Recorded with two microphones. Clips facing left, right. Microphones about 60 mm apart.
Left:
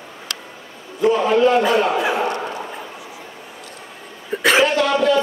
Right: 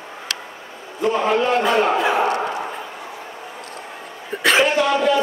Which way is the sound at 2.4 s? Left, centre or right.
Right.